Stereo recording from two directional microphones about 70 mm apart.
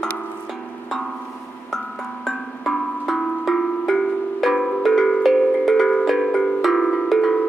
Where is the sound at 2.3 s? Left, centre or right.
Centre.